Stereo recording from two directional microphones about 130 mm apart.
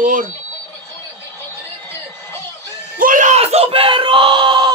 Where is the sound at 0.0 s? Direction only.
90° right.